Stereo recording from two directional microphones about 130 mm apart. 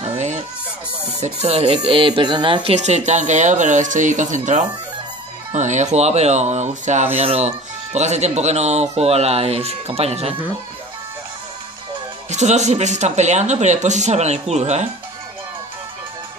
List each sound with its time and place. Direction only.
0.0 s music: 55° right (ahead or behind)
1.2 s speech: 55° right (ahead or behind); by 2.7 s 40° right (ahead or behind)
2.7 s speech: 60° right (ahead or behind)
7.2 s speech: 50° right (ahead or behind)
12.3 s speech: 60° right (ahead or behind)